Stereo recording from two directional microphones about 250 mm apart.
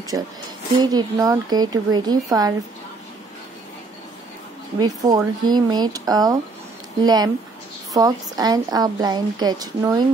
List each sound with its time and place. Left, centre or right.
0.1 s a woman's voice: centre
4.7 s a woman's voice: centre